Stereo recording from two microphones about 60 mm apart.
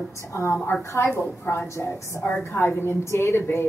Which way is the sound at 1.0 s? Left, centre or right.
Left.